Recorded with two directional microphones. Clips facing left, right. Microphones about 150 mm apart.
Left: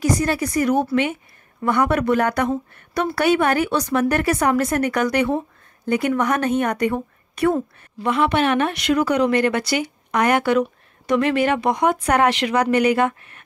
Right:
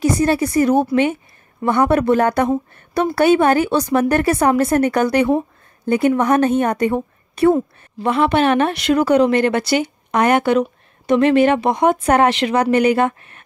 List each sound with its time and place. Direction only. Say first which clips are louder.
0.0 s speech: right 4 dB; 30° right (ahead or behind)